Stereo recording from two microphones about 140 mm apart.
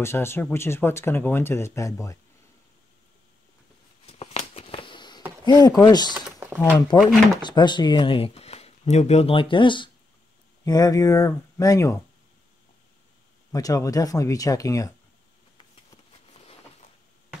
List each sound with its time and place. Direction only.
0.0 s speech: 20° left (ahead or behind)
4.0 s a sound: 50° left (ahead or behind); by 5.2 s 35° left (ahead or behind)
5.4 s speech: 30° left (ahead or behind)
13.5 s speech: 25° left (ahead or behind)